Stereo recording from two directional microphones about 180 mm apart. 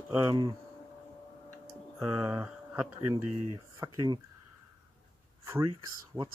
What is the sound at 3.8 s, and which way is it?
Speech, 20° right (ahead or behind).